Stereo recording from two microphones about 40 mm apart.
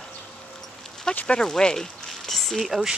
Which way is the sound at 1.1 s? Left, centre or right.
Centre.